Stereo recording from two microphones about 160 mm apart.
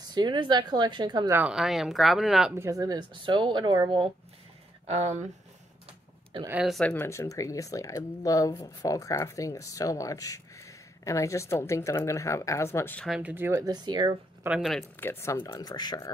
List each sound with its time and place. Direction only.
0.1 s speech: 30° right (ahead or behind)
1.3 s speech: 5° right (ahead or behind)
2.5 s speech: 20° right (ahead or behind)
4.8 s speech: 45° right (ahead or behind)
6.6 s speech: 5° left (ahead or behind)
7.1 s speech: 20° left (ahead or behind)
13.0 s speech: 5° right (ahead or behind)
13.7 s speech: 25° right (ahead or behind)
14.4 s speech: 5° right (ahead or behind)
15.0 s speech: 15° left (ahead or behind)
15.3 s speech: 25° left (ahead or behind)